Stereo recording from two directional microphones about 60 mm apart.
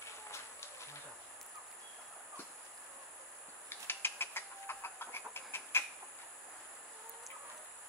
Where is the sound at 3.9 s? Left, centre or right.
Left.